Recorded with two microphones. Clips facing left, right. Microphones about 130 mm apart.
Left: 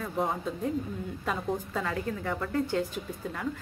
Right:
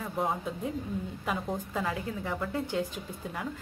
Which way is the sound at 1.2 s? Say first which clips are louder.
Left 3 dB; 10° right (ahead or behind).